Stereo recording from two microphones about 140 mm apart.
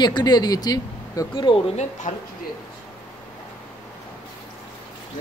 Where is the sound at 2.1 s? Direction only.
60° left (ahead or behind).